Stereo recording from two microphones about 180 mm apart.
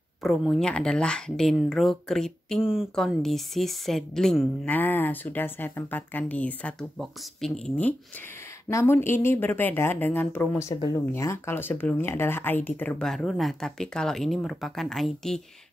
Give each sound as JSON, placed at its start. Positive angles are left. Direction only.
{"t": 0.2, "sound": "speech", "side_deg": 0}